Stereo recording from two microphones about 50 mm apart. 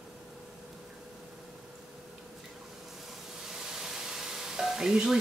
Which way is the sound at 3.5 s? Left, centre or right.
Centre.